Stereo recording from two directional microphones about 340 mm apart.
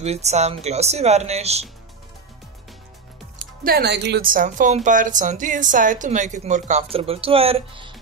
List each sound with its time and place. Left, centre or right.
0.0 s a woman's voice: centre
3.6 s a woman's voice: right